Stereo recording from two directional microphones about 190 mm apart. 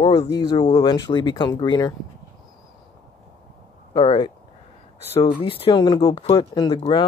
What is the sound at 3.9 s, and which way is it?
Speech, 25° left (ahead or behind).